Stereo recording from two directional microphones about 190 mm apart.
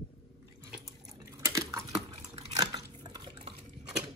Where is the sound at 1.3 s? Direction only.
15° right (ahead or behind).